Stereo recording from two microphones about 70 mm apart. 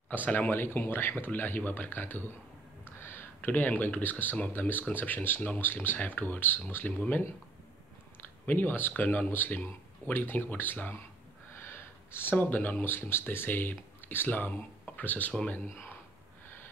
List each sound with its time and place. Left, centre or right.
0.1 s speech: left
3.0 s a sound: left
3.4 s speech: left
8.5 s speech: left